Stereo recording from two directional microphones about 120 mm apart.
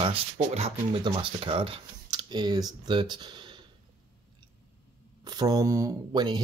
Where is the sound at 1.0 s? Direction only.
45° right (ahead or behind).